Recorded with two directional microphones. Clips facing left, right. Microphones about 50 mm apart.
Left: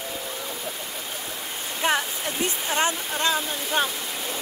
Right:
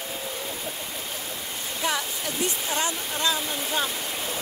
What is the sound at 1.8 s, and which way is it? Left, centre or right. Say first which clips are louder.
Speech: left 4 dB; left.